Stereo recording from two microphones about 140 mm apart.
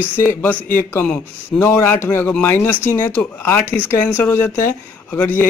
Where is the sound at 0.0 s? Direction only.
15° left (ahead or behind).